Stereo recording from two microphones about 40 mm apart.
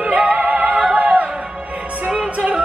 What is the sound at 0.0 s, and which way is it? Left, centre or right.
Music, right.